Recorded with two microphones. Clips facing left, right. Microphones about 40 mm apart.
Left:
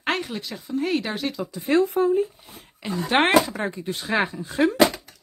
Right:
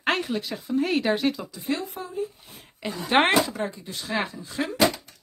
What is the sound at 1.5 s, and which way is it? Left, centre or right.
Speech, left.